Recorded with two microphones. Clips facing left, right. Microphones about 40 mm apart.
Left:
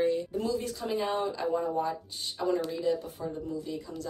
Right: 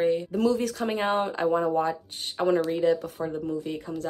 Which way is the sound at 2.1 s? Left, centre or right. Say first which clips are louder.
Right 7 dB; right.